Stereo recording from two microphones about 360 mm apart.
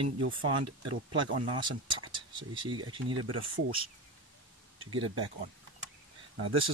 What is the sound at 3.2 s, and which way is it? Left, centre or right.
Speech, right.